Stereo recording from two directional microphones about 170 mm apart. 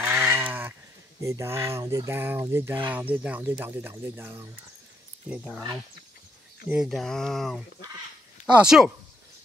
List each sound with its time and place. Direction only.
0.0 s goat: 15° right (ahead or behind)
1.2 s speech: 15° right (ahead or behind)
5.3 s speech: centre (ahead or behind)
6.7 s speech: centre (ahead or behind)
8.6 s speech: 5° right (ahead or behind)